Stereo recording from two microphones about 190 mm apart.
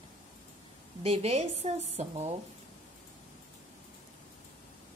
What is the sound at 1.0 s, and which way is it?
Speech, 30° right (ahead or behind).